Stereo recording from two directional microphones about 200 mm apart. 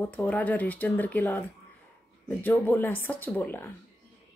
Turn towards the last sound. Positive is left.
turn(degrees=10)  # may be behind; listen again after turning